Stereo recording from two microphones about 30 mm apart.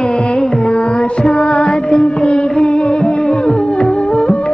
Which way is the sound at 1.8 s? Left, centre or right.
Left.